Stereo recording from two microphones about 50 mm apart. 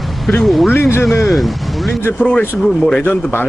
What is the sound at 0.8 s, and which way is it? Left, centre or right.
Speech, left.